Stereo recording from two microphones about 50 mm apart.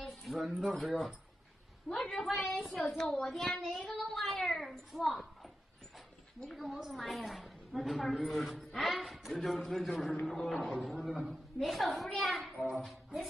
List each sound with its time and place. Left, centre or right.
0.0 s a woman's voice: centre
2.3 s a woman's voice: centre